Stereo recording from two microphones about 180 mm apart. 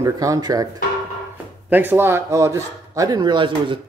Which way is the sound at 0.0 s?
20° right (ahead or behind).